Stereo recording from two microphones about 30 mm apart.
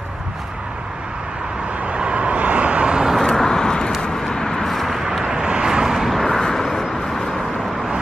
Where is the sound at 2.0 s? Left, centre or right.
Right.